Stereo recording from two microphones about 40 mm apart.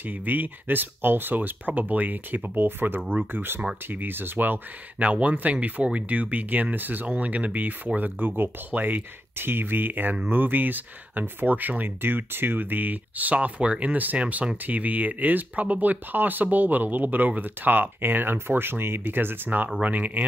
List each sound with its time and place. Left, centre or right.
0.0 s speech: right
1.8 s speech: right
4.9 s speech: right
7.1 s speech: right
14.6 s speech: right
19.8 s speech: right